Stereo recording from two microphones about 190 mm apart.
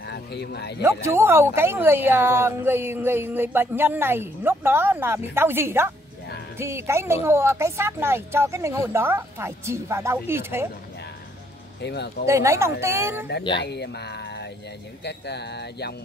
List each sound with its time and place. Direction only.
0.1 s speech: 60° left (ahead or behind)
1.0 s speech: 10° right (ahead or behind)
11.8 s speech: 60° left (ahead or behind)
12.3 s speech: 15° right (ahead or behind)
13.6 s speech: 60° left (ahead or behind)